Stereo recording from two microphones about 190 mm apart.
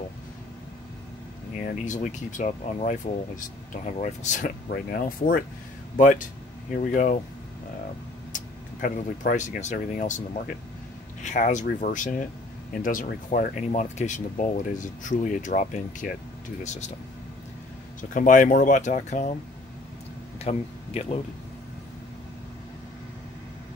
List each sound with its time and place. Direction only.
1.6 s speech: 40° left (ahead or behind)
4.7 s speech: 55° left (ahead or behind)
8.8 s speech: 45° left (ahead or behind)
18.1 s speech: 45° left (ahead or behind)
20.3 s speech: 35° left (ahead or behind)